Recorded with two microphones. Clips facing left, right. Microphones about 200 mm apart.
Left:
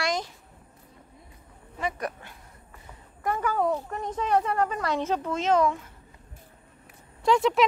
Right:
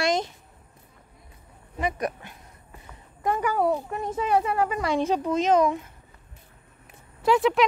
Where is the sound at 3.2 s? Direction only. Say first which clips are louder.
Right 2 dB; 15° right (ahead or behind).